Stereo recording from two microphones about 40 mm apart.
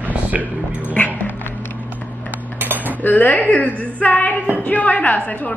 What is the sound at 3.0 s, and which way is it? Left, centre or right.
Speech, left.